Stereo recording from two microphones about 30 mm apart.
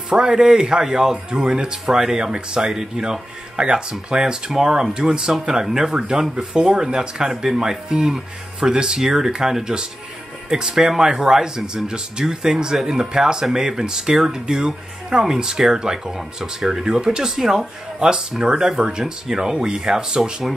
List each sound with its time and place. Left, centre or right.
0.1 s speech: right
5.9 s speech: right
17.4 s speech: centre
18.4 s speech: right